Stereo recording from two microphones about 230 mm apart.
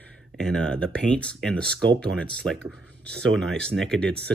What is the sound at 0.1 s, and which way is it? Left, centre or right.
Speech, centre.